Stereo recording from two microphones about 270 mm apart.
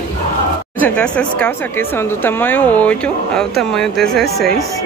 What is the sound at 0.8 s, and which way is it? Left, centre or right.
Speech, centre.